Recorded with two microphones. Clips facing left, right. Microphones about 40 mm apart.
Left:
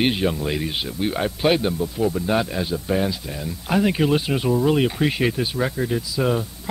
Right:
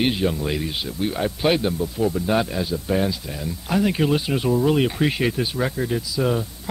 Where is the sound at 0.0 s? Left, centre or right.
Centre.